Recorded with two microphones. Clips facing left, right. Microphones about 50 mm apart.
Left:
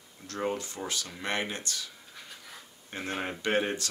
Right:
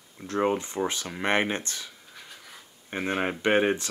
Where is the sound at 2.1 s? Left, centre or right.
Centre.